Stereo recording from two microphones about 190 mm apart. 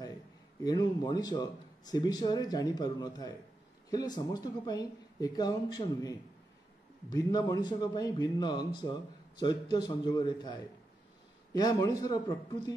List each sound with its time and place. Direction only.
0.7 s speech: 20° left (ahead or behind)